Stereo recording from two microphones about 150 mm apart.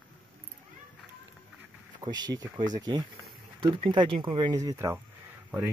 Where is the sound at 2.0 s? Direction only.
25° right (ahead or behind).